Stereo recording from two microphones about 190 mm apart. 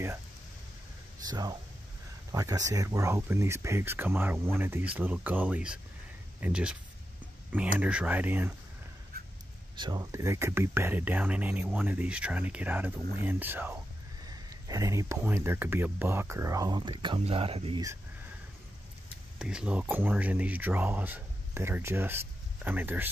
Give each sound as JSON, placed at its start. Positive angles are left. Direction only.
{"t": 1.2, "sound": "speech", "side_deg": -20}
{"t": 7.8, "sound": "speech", "side_deg": -5}
{"t": 9.8, "sound": "speech", "side_deg": -20}
{"t": 19.3, "sound": "speech", "side_deg": -5}